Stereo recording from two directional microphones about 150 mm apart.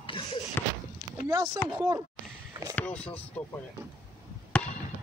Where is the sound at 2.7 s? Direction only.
10° left (ahead or behind).